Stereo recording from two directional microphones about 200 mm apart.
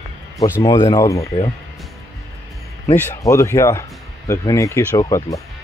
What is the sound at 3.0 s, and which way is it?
Speech, 15° left (ahead or behind).